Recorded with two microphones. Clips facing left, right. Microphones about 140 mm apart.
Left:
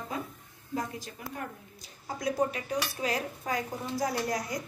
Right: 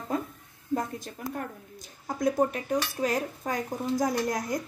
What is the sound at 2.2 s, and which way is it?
Speech, 50° right (ahead or behind).